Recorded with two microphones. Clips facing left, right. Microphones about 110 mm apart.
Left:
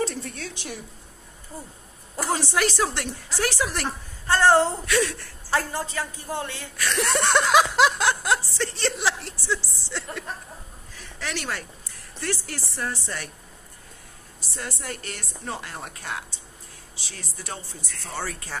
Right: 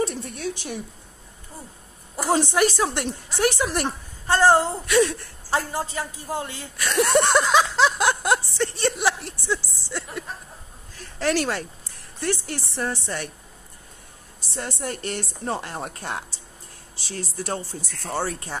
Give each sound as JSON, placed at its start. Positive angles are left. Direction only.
{"t": 0.0, "sound": "a woman's voice", "side_deg": -15}
{"t": 2.2, "sound": "speech", "side_deg": -25}
{"t": 7.5, "sound": "a sound", "side_deg": 5}
{"t": 8.0, "sound": "a sound", "side_deg": -20}
{"t": 11.0, "sound": "speech", "side_deg": -40}
{"t": 14.5, "sound": "speech", "side_deg": -30}